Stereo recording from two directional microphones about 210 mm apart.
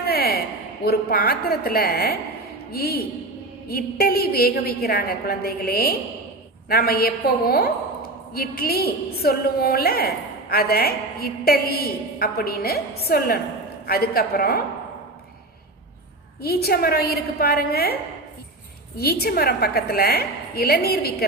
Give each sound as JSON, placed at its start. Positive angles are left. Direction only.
{"t": 0.0, "sound": "a sound", "side_deg": 50}
{"t": 0.8, "sound": "a woman's voice", "side_deg": 45}
{"t": 16.3, "sound": "a woman's voice", "side_deg": 50}
{"t": 18.9, "sound": "a woman's voice", "side_deg": 45}